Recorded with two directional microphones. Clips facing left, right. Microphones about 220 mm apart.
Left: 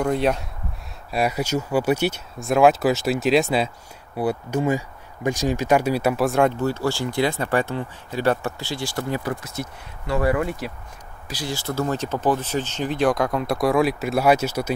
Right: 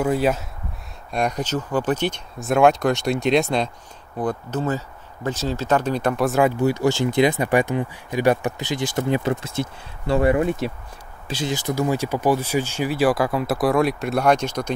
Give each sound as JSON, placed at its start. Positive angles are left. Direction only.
{"t": 0.0, "sound": "speech", "side_deg": -5}
{"t": 6.6, "sound": "speech", "side_deg": -15}